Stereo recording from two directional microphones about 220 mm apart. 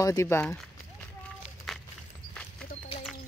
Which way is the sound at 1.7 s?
Centre (ahead or behind).